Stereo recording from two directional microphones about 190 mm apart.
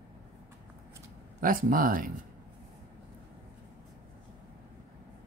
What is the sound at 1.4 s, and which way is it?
Speech, 45° right (ahead or behind).